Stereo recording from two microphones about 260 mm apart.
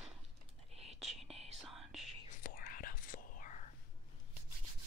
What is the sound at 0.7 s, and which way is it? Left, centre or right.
Whispering, right.